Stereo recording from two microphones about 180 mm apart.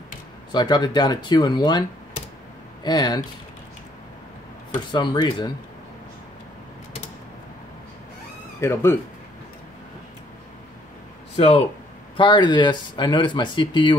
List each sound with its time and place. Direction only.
0.5 s speech: 25° left (ahead or behind)
4.9 s speech: 25° left (ahead or behind)
8.5 s speech: 15° left (ahead or behind)
11.3 s speech: 30° left (ahead or behind)